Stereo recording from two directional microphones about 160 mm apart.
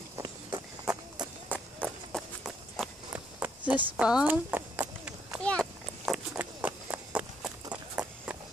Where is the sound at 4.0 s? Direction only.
5° right (ahead or behind).